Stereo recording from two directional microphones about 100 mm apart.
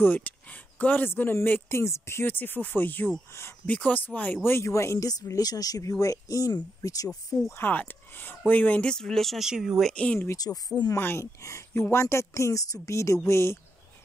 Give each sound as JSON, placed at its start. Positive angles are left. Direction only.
{"t": 0.0, "sound": "speech", "side_deg": 20}
{"t": 4.5, "sound": "speech", "side_deg": 30}
{"t": 7.5, "sound": "speech", "side_deg": 20}
{"t": 9.9, "sound": "speech", "side_deg": 10}
{"t": 10.3, "sound": "speech", "side_deg": 40}
{"t": 11.0, "sound": "speech", "side_deg": 25}